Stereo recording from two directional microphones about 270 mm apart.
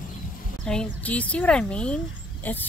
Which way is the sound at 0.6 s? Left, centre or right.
Centre.